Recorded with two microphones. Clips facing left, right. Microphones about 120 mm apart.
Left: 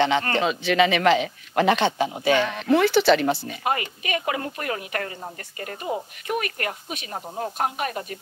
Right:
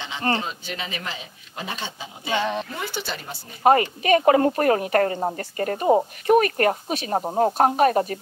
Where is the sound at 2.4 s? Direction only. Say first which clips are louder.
Even; 20° right (ahead or behind).